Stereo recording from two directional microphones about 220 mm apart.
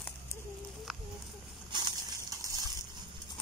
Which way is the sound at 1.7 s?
20° right (ahead or behind).